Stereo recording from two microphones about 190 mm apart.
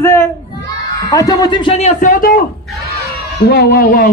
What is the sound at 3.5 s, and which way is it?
Speech, 55° left (ahead or behind).